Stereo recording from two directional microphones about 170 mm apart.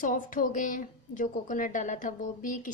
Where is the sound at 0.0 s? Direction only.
50° left (ahead or behind).